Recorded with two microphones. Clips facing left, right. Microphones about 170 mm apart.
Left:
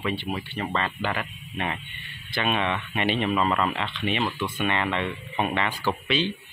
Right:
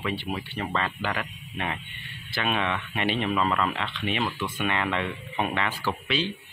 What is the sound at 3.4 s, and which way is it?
Speech, 10° left (ahead or behind).